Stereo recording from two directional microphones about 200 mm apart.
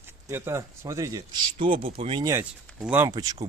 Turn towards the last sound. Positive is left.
turn(degrees=-15)  # may be behind; listen again after turning